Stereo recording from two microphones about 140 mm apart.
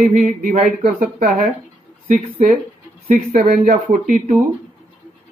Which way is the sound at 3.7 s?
65° right (ahead or behind).